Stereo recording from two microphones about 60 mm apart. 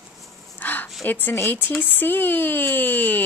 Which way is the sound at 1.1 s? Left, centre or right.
Left.